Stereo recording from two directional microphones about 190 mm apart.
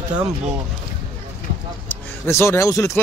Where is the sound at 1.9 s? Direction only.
15° left (ahead or behind).